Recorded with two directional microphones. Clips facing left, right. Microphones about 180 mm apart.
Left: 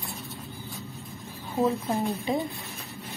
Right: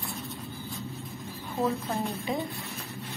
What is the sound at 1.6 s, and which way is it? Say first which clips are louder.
Speech: left 3 dB; 15° left (ahead or behind).